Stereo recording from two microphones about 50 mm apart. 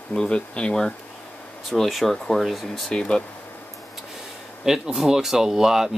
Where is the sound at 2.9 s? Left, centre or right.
Centre.